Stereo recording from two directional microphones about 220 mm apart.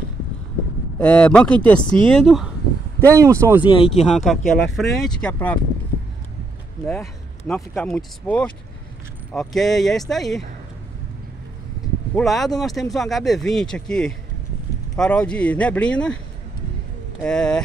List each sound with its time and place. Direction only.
0.9 s speech: 5° left (ahead or behind)
3.2 s speech: 10° right (ahead or behind)
3.6 s speech: 25° left (ahead or behind)
4.1 s speech: centre (ahead or behind)
6.9 s speech: centre (ahead or behind)
12.2 s speech: centre (ahead or behind)
17.2 s speech: 5° left (ahead or behind)